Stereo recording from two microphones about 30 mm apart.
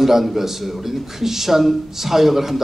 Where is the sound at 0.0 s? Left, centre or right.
Centre.